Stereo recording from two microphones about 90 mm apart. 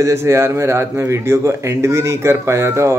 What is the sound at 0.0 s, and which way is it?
A man's voice, 30° right (ahead or behind).